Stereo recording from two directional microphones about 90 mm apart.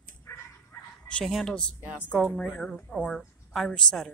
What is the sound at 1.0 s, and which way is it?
Speech, 10° left (ahead or behind).